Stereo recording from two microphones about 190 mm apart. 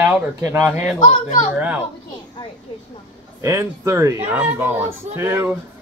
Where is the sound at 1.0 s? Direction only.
45° left (ahead or behind).